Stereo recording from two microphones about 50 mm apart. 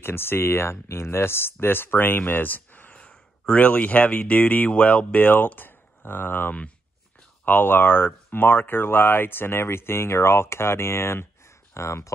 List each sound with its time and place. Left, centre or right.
0.0 s speech: left
3.0 s speech: left